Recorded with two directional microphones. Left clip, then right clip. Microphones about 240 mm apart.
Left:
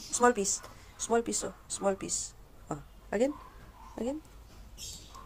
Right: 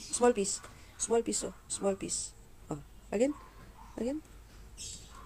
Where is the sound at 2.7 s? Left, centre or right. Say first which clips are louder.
Left 2 dB; centre.